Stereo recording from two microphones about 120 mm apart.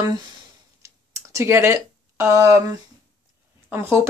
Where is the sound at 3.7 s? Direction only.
20° right (ahead or behind).